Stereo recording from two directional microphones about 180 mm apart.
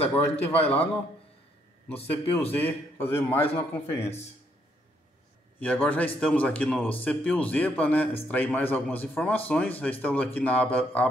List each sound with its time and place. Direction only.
0.1 s a man's voice: 10° left (ahead or behind)
2.0 s a man's voice: 10° left (ahead or behind)
4.0 s a man's voice: 35° left (ahead or behind)
5.6 s a man's voice: 10° left (ahead or behind)